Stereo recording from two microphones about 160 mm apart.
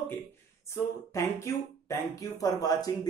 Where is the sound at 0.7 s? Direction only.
15° left (ahead or behind).